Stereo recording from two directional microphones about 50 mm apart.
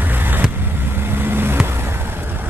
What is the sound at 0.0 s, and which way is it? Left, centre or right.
Vehicle, right.